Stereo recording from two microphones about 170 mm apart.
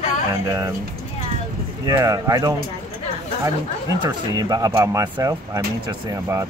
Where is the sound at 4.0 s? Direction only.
25° right (ahead or behind).